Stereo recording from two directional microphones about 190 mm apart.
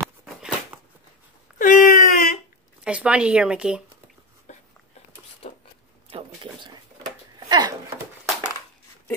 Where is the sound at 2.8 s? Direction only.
5° right (ahead or behind).